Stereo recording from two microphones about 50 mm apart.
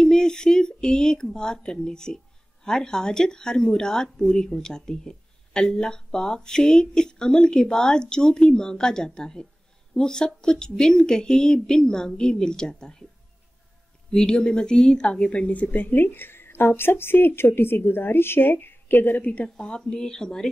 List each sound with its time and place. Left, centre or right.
0.0 s a sound: centre
2.6 s speech: centre
14.1 s speech: centre